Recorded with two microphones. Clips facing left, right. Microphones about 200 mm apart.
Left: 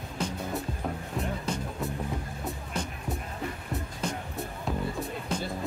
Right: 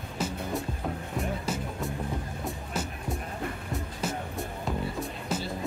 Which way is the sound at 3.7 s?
5° right (ahead or behind).